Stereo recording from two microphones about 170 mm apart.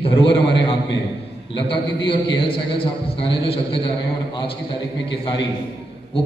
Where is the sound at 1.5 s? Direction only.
30° left (ahead or behind).